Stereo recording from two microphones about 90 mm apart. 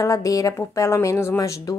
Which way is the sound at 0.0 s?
40° left (ahead or behind).